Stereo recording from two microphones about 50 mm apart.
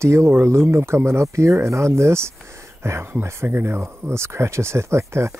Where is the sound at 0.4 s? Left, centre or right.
Right.